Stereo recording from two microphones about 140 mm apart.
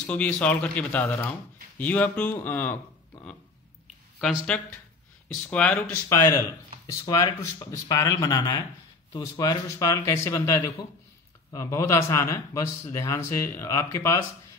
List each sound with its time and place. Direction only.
0.0 s a man's voice: 10° left (ahead or behind)
4.2 s speech: 5° right (ahead or behind)
5.5 s a man's voice: 10° left (ahead or behind)
6.0 s speech: 20° left (ahead or behind)